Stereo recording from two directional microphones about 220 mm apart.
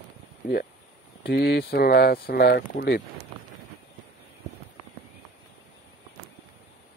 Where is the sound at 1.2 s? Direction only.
45° left (ahead or behind).